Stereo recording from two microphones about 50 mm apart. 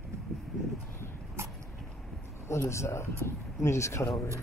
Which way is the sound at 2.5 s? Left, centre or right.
Left.